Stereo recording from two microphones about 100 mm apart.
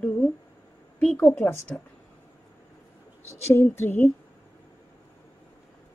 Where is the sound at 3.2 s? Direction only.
25° left (ahead or behind).